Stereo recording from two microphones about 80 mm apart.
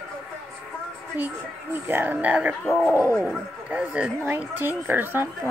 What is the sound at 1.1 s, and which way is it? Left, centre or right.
A woman's voice, right.